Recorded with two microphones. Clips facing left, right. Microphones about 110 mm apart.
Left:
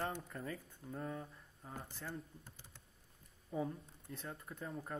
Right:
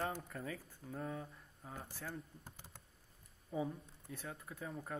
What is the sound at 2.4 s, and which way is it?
Computer keyboard, 45° right (ahead or behind).